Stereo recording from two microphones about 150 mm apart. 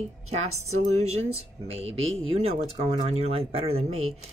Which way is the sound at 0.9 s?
45° right (ahead or behind).